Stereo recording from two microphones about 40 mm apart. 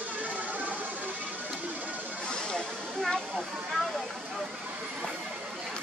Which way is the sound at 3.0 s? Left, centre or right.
Centre.